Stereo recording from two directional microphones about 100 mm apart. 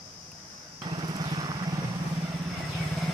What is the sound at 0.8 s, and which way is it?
Vehicle, 50° right (ahead or behind).